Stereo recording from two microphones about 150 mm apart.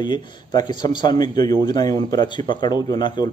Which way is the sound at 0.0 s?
30° left (ahead or behind).